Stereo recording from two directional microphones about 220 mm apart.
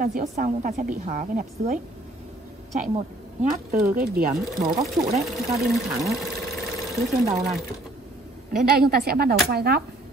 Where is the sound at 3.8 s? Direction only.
40° right (ahead or behind).